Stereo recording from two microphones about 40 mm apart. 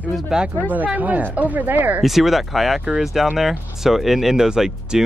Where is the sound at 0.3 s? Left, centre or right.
Centre.